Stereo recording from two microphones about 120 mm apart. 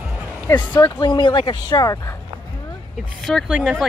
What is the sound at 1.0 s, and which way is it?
Speech, 40° left (ahead or behind).